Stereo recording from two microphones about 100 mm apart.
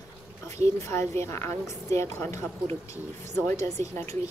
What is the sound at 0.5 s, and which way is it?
A woman's voice, 30° left (ahead or behind).